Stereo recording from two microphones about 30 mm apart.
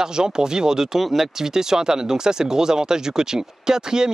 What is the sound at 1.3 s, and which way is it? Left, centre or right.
Speech, centre.